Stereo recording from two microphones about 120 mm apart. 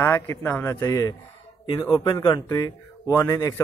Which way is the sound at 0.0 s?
20° left (ahead or behind).